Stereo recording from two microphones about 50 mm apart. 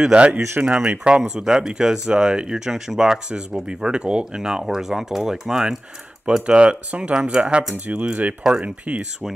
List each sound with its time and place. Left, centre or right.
0.1 s speech: right
7.7 s speech: right